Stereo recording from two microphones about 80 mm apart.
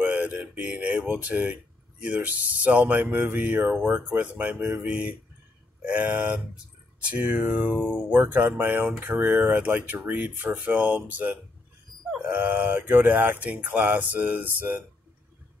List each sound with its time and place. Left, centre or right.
0.0 s speech: centre